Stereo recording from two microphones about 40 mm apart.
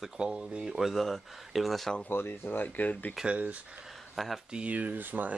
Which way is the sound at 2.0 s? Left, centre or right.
Left.